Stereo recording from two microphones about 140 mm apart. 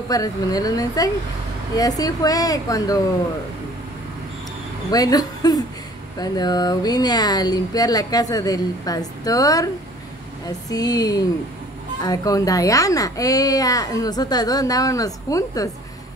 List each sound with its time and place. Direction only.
0.1 s speech: 25° left (ahead or behind)
4.9 s speech: 25° left (ahead or behind)